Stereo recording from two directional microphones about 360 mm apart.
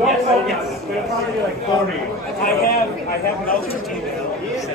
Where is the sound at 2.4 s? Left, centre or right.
Left.